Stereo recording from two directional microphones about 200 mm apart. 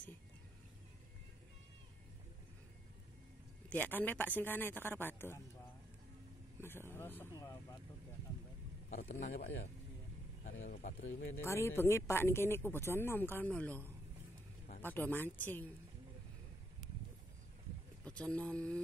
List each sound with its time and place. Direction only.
3.7 s speech: 10° left (ahead or behind)
6.6 s speech: 10° left (ahead or behind)
9.2 s speech: 50° left (ahead or behind)
10.4 s speech: 40° left (ahead or behind)
11.4 s speech: 15° left (ahead or behind)
14.8 s speech: 10° left (ahead or behind)
18.0 s speech: 5° left (ahead or behind)